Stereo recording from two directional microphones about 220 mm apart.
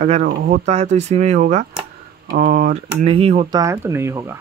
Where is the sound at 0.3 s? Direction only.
45° right (ahead or behind).